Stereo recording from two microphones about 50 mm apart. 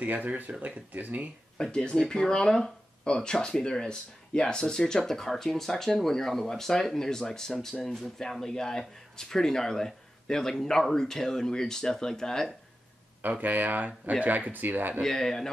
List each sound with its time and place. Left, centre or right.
0.0 s speech: right
1.6 s speech: centre
7.8 s speech: centre
13.2 s speech: right
15.0 s speech: centre